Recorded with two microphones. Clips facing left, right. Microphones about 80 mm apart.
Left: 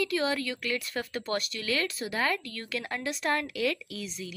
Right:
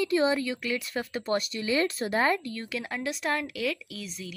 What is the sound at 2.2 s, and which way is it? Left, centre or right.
Speech, right.